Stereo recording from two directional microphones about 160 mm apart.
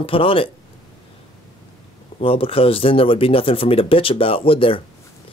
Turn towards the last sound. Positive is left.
turn(degrees=35)  # may be behind; listen again after turning